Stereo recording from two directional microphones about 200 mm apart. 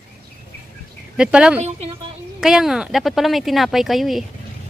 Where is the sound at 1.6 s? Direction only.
30° right (ahead or behind).